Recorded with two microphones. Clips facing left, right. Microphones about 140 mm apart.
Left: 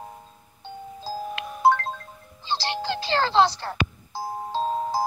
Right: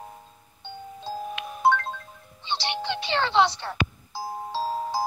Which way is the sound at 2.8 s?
30° left (ahead or behind).